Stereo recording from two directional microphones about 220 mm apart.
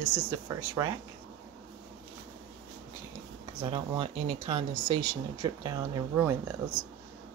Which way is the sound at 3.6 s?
20° right (ahead or behind).